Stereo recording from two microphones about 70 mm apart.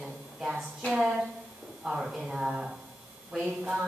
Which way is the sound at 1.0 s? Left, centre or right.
Centre.